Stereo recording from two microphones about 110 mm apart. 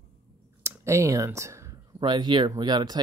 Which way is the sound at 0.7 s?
25° right (ahead or behind).